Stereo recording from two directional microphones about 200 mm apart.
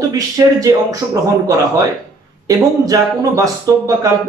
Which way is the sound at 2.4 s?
15° right (ahead or behind).